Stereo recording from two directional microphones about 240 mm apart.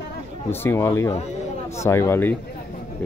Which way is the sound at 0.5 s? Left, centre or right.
Centre.